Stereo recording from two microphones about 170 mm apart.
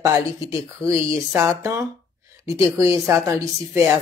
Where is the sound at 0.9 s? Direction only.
30° left (ahead or behind).